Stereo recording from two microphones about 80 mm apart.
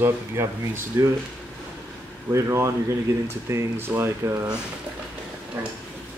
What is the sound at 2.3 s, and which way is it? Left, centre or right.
Speech, right.